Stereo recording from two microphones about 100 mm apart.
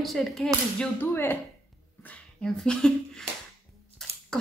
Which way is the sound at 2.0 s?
15° left (ahead or behind).